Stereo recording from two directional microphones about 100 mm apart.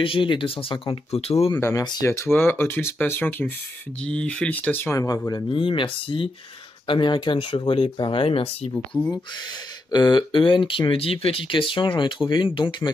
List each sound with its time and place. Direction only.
0.0 s speech: 60° left (ahead or behind); by 1.5 s 90° left
1.6 s speech: 30° left (ahead or behind)
4.9 s speech: 35° left (ahead or behind)
5.5 s speech: 55° left (ahead or behind)
6.9 s speech: 50° left (ahead or behind); by 8.7 s 70° left (ahead or behind)
9.8 s speech: 45° left (ahead or behind)